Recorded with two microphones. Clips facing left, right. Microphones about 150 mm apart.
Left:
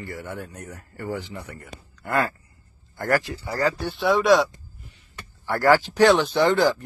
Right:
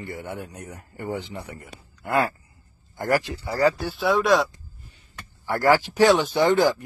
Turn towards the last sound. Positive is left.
turn(degrees=-15)  # may be behind; listen again after turning